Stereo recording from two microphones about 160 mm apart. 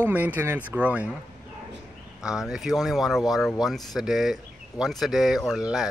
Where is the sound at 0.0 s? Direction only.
10° right (ahead or behind).